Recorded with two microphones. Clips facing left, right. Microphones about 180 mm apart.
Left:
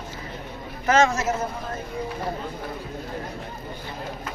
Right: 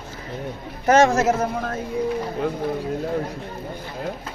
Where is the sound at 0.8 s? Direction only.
55° right (ahead or behind).